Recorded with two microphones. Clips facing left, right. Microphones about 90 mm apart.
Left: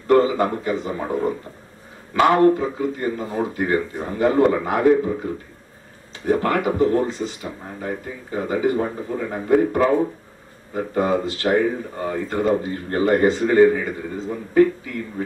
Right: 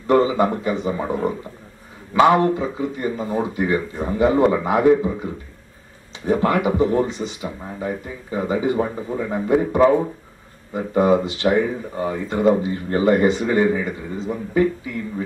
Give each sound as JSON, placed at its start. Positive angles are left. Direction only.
{"t": 0.0, "sound": "speech", "side_deg": -20}